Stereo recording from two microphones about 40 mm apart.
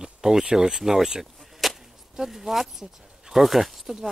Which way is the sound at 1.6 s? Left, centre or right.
Centre.